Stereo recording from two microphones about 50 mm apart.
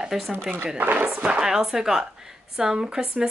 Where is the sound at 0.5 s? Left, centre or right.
Right.